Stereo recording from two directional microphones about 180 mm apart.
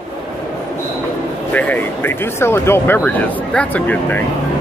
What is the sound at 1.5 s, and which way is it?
Speech, 10° left (ahead or behind).